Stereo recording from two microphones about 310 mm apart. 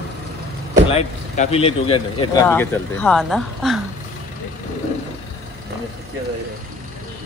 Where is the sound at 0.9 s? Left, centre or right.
Centre.